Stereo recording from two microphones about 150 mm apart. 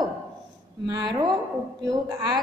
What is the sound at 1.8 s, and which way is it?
Speech, 25° right (ahead or behind).